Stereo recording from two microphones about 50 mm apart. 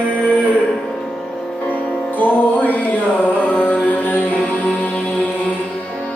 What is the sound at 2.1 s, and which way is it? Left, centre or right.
Music, left.